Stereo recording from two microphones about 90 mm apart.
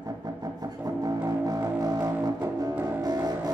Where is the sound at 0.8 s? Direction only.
40° right (ahead or behind).